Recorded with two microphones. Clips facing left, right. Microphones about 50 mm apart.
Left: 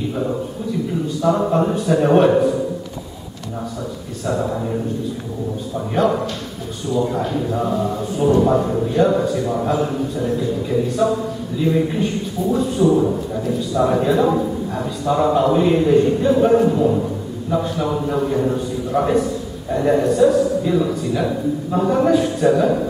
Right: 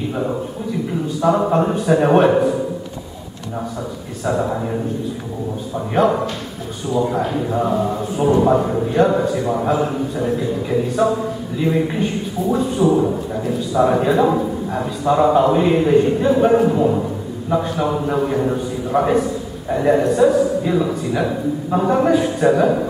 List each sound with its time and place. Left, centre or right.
1.2 s a man's voice: centre
4.3 s speech: centre
5.9 s a man's voice: centre